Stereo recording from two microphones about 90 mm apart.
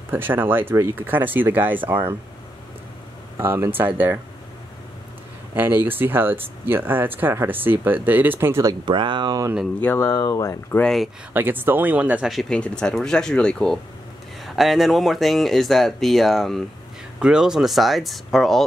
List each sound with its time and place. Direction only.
0.1 s speech: 25° right (ahead or behind)
3.3 s speech: 30° right (ahead or behind)
5.5 s speech: 20° right (ahead or behind)
8.8 s speech: 65° right (ahead or behind)
9.9 s speech: 35° left (ahead or behind)
10.8 s speech: 5° left (ahead or behind)
11.3 s speech: 25° right (ahead or behind)
12.3 s speech: centre (ahead or behind)
12.5 s speech: 10° left (ahead or behind)
14.4 s speech: centre (ahead or behind)
17.2 s speech: 10° right (ahead or behind)